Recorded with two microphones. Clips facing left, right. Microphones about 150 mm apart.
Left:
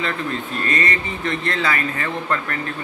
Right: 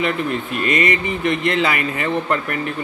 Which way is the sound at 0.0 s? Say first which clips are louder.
Right 4 dB; 15° right (ahead or behind).